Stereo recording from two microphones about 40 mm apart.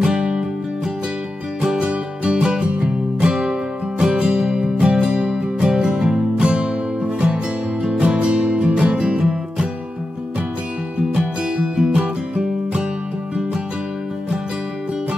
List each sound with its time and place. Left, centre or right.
0.0 s music: centre
1.6 s music: right
9.2 s music: centre
11.0 s music: right